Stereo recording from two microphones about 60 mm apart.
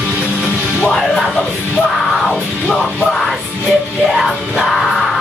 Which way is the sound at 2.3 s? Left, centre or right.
Left.